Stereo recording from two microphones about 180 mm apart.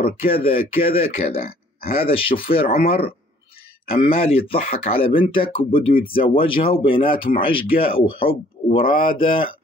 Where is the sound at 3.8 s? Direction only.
30° left (ahead or behind).